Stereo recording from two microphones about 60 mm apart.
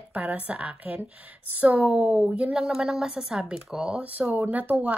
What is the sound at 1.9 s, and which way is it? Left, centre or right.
A woman's voice, centre.